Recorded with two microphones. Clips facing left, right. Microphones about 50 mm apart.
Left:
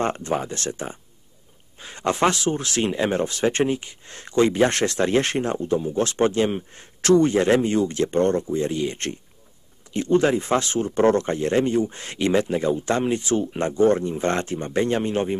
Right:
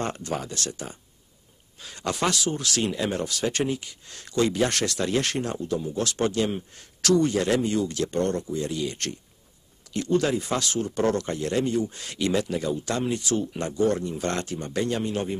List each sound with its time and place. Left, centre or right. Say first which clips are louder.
0.0 s speech: left 6 dB; left